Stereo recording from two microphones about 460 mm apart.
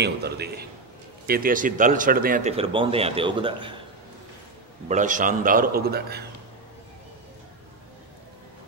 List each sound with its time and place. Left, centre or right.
0.0 s a man's voice: right
4.8 s speech: centre